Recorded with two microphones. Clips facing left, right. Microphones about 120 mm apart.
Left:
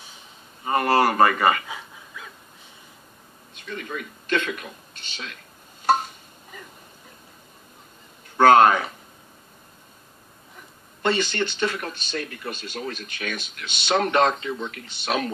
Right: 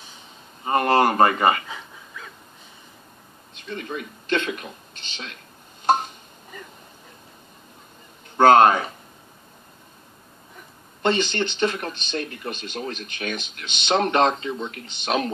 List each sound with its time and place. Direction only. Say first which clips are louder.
0.7 s speech: right 1 dB; 30° right (ahead or behind)
3.6 s speech: right 2 dB; 30° right (ahead or behind)
8.5 s speech: right 1 dB; 25° right (ahead or behind)
11.0 s speech: right 1 dB; 20° right (ahead or behind)